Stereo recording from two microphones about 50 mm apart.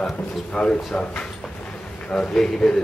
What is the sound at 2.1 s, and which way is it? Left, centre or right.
Speech, centre.